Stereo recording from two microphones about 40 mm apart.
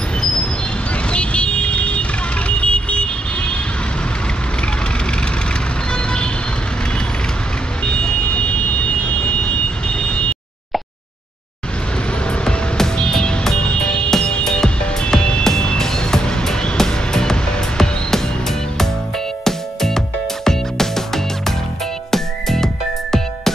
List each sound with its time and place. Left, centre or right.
0.2 s vehicle: left
5.9 s vehicle: left
7.8 s vehicle: left
12.3 s music: centre
19.4 s music: centre